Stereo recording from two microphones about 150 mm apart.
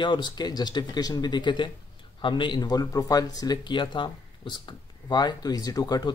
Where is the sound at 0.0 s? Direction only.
30° left (ahead or behind).